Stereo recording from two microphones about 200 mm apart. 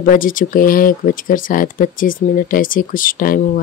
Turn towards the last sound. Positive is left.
turn(degrees=45)  # may be behind; listen again after turning